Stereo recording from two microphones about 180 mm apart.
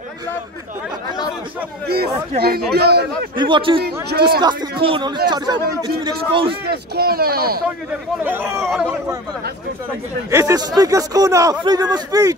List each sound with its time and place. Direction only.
2.7 s speech: 65° right (ahead or behind)
3.3 s speech: 25° right (ahead or behind)
3.8 s speech: 60° right (ahead or behind)
4.4 s speech: 25° right (ahead or behind)
6.7 s speech: 60° right (ahead or behind)
8.2 s speech: 10° right (ahead or behind)
10.3 s speech: 20° right (ahead or behind)